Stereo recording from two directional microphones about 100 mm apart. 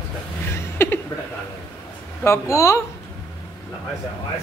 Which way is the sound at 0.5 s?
25° left (ahead or behind).